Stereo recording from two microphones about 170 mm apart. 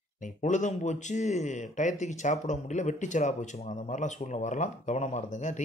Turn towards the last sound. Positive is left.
turn(degrees=45)  # may be behind; listen again after turning